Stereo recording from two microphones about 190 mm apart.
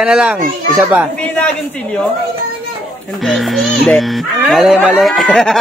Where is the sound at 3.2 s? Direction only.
Centre (ahead or behind).